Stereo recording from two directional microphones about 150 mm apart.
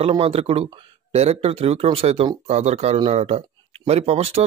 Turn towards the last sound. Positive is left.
turn(degrees=-40)  # may be behind; listen again after turning